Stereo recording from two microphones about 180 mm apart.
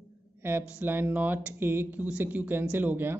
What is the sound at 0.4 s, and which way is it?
A woman's voice, 10° right (ahead or behind).